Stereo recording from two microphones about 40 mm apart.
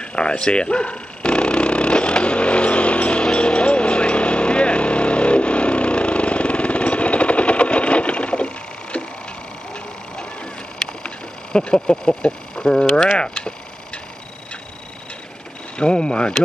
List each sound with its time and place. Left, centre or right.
0.0 s dog: left
11.5 s speech: left
15.8 s speech: left